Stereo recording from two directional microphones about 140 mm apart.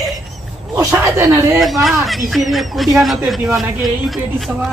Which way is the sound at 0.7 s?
20° right (ahead or behind).